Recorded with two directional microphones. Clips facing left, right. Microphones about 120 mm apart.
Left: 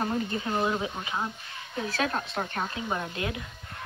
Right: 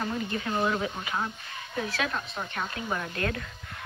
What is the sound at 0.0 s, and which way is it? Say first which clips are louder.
Speech: left 2 dB; 30° left (ahead or behind).